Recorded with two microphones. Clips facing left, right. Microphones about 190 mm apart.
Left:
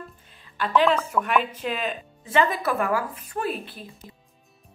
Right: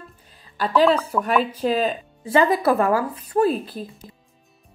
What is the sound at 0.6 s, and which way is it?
A woman's voice, 35° right (ahead or behind).